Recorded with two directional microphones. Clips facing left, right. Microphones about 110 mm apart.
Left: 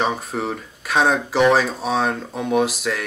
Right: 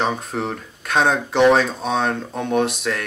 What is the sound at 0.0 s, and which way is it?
Speech, centre (ahead or behind).